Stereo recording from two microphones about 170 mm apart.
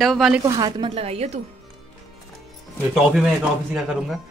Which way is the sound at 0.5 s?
25° right (ahead or behind).